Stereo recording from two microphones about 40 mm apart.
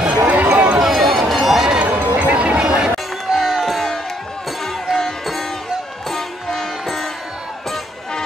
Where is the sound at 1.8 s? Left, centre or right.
Right.